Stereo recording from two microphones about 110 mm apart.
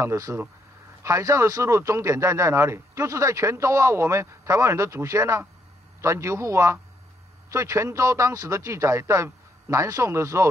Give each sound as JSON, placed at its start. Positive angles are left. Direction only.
{"t": 0.0, "sound": "a man's voice", "side_deg": -25}